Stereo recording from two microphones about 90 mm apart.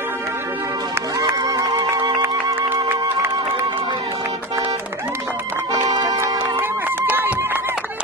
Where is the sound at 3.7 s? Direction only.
90° right.